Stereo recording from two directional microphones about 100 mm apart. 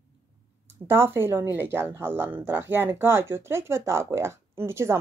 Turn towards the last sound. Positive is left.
turn(degrees=-25)  # may be behind; listen again after turning